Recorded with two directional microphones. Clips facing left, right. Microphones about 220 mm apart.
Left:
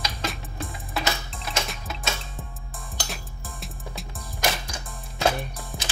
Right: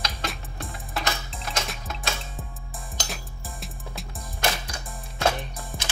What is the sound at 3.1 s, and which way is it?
Music, centre (ahead or behind).